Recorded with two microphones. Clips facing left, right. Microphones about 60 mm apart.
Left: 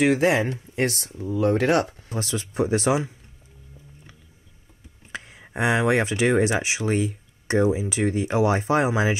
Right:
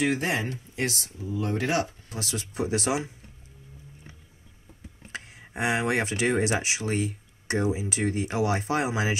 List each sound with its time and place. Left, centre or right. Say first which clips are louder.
0.0 s speech: left 7 dB; left
2.0 s speech: left 5 dB; left
5.5 s speech: left 5 dB; left